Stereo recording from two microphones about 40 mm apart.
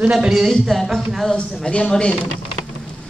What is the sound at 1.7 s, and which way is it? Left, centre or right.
Speech, left.